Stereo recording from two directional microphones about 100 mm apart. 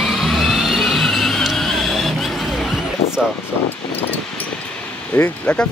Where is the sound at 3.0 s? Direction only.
80° left.